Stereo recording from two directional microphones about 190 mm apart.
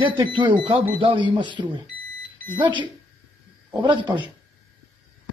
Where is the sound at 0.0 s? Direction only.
25° right (ahead or behind).